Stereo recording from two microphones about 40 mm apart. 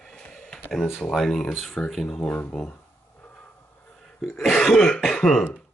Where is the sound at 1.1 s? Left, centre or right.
Centre.